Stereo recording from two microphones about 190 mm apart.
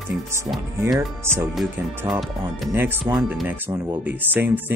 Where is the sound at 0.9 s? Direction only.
10° right (ahead or behind).